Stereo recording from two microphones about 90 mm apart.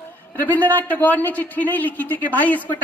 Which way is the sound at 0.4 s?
20° left (ahead or behind).